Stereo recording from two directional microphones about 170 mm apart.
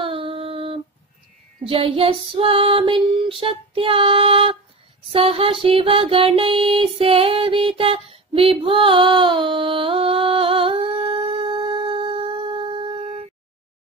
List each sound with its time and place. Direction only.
0.0 s child singing: 30° right (ahead or behind)
5.1 s music: 35° right (ahead or behind)